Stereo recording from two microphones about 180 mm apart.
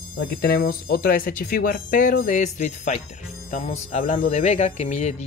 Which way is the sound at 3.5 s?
45° left (ahead or behind).